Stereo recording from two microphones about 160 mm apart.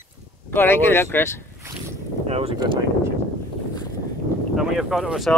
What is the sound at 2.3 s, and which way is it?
Speech, 40° right (ahead or behind).